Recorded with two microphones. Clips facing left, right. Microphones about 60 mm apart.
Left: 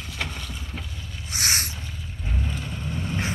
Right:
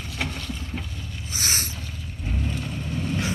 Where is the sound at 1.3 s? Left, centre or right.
Left.